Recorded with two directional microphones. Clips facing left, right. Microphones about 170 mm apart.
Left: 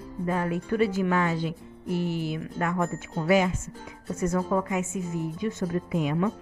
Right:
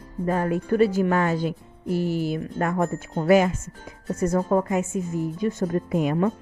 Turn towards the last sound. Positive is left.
turn(degrees=-45)  # may be behind; listen again after turning